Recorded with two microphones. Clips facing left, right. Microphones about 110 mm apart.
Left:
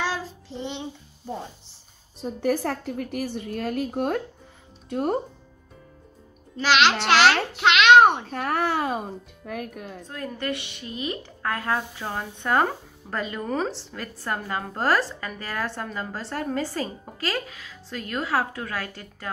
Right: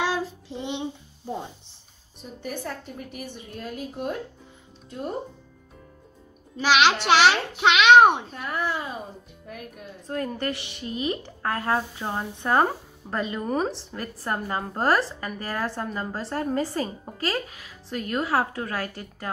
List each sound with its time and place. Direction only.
0.0 s child singing: 15° right (ahead or behind)
2.4 s a woman's voice: 80° left; by 5.1 s 65° left (ahead or behind)
6.5 s a child's voice: 10° right (ahead or behind)
8.3 s a child's voice: 70° left (ahead or behind)
10.0 s a woman's voice: 40° right (ahead or behind)